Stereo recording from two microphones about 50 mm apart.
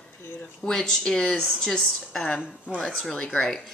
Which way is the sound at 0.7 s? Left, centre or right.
Centre.